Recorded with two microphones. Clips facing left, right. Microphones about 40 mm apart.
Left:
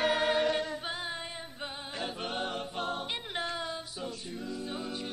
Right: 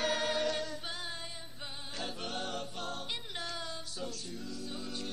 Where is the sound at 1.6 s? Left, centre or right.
Left.